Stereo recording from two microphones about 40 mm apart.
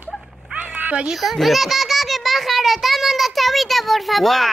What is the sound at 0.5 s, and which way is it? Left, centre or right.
Cat, right.